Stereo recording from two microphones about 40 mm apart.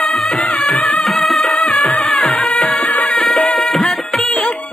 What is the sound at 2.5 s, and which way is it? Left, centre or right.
Music, left.